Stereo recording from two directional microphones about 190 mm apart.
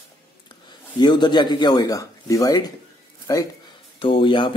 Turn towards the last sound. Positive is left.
turn(degrees=25)  # may be behind; listen again after turning